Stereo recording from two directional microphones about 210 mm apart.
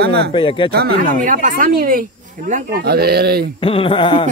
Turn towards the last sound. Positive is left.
turn(degrees=25)  # may be behind; listen again after turning